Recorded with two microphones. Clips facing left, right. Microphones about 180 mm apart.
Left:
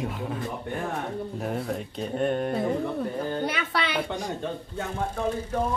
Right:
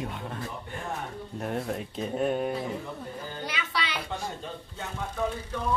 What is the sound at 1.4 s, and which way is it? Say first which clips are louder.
Speech: right 1 dB; centre (ahead or behind).